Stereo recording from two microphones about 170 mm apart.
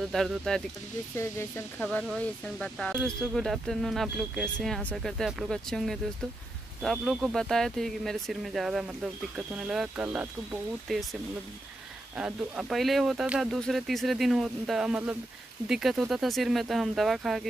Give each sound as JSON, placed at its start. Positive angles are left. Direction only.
{"t": 0.1, "sound": "speech", "side_deg": 0}
{"t": 1.1, "sound": "speech", "side_deg": 15}
{"t": 12.2, "sound": "speech", "side_deg": -5}